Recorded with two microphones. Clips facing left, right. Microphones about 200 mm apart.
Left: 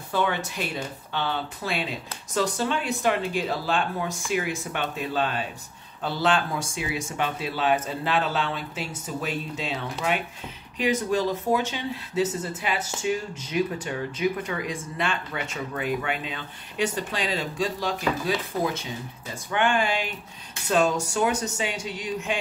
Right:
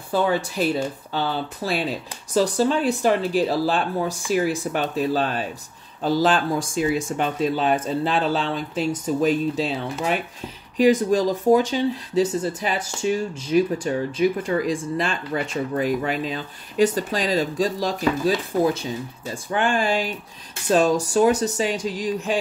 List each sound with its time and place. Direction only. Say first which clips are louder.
0.1 s speech: right 5 dB; 35° right (ahead or behind)
10.8 s speech: right 7 dB; 35° right (ahead or behind)